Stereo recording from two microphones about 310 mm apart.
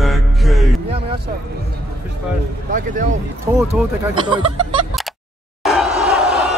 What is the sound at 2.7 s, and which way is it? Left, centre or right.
Speech, right.